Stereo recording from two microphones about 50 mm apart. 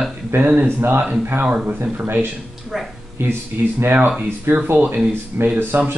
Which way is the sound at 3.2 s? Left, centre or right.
Right.